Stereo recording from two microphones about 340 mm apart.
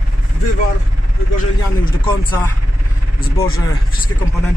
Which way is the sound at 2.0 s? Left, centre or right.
Centre.